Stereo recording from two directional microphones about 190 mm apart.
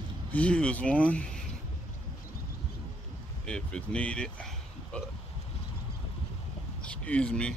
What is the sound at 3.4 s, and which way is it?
Speech, 5° left (ahead or behind).